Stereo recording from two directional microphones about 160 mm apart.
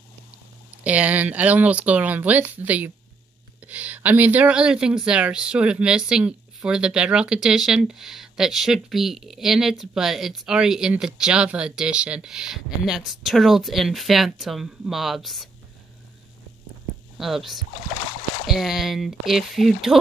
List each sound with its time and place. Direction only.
0.8 s speech: 10° right (ahead or behind)
17.2 s speech: centre (ahead or behind)